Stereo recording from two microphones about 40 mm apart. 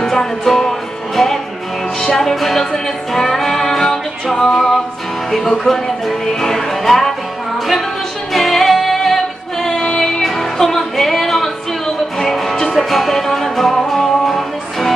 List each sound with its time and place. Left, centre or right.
0.0 s music: centre
5.3 s speech: centre
6.2 s music: centre
8.3 s music: centre
10.2 s music: centre